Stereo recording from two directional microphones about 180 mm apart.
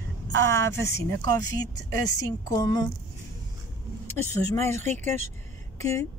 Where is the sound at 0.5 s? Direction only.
15° left (ahead or behind).